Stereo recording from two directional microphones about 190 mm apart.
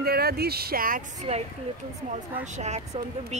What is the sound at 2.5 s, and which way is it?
Speech, 35° right (ahead or behind).